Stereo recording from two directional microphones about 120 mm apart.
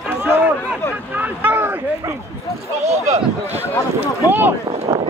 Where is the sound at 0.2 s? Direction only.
15° right (ahead or behind).